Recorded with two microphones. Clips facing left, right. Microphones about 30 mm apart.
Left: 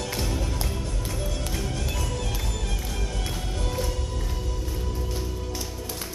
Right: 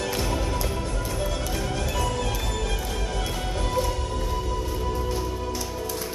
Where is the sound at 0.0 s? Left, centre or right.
Centre.